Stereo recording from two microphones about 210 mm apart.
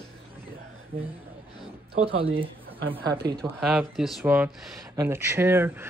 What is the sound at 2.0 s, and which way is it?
Speech, 25° right (ahead or behind).